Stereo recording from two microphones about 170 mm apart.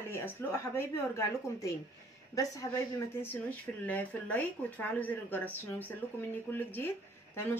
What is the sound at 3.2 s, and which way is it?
A woman's voice, 10° left (ahead or behind).